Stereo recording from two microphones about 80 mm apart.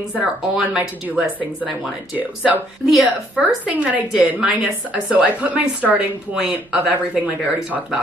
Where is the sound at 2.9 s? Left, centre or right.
Centre.